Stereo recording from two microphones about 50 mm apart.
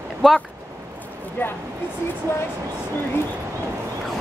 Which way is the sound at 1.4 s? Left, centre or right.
Left.